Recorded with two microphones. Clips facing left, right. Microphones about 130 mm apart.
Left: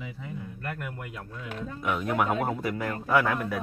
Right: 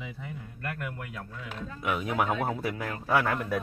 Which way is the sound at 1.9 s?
5° right (ahead or behind).